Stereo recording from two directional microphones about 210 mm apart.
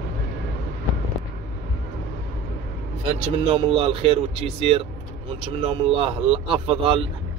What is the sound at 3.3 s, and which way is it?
Speech, 25° right (ahead or behind).